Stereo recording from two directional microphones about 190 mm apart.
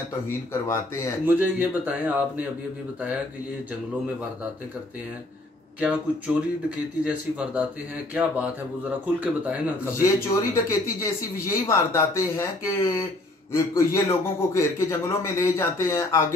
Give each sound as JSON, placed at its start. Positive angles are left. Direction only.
{"t": 0.3, "sound": "a man's voice", "side_deg": 15}
{"t": 1.2, "sound": "speech", "side_deg": -10}
{"t": 5.8, "sound": "speech", "side_deg": -5}
{"t": 10.0, "sound": "a man's voice", "side_deg": 15}